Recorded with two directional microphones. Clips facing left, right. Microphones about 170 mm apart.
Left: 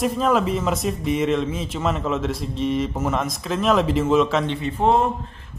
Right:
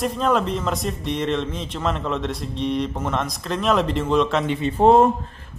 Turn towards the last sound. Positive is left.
turn(degrees=-35)  # may be behind; listen again after turning